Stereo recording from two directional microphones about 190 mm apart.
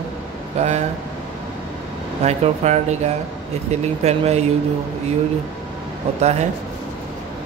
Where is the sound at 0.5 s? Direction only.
35° right (ahead or behind).